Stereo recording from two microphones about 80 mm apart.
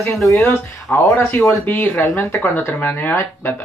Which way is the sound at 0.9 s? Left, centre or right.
Left.